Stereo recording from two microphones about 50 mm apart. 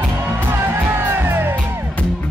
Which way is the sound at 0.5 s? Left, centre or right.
Right.